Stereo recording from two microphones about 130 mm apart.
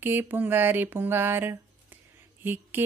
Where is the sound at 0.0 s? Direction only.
15° right (ahead or behind).